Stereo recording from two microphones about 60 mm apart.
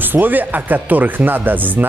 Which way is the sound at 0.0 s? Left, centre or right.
Right.